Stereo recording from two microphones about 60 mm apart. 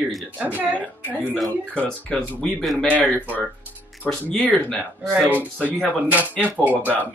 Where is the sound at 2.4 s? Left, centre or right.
Centre.